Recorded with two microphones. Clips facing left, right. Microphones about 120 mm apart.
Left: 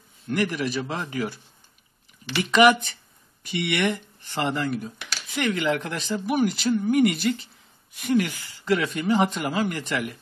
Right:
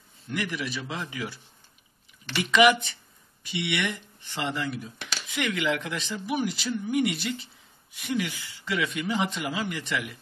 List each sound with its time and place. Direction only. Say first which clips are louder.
0.3 s speech: left 6 dB; 45° left (ahead or behind)
2.5 s speech: left 3 dB; 40° left (ahead or behind)